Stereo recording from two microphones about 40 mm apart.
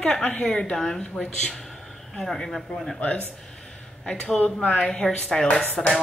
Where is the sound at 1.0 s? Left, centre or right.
Left.